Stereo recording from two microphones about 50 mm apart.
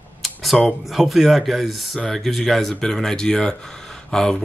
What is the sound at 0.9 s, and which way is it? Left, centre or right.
Speech, centre.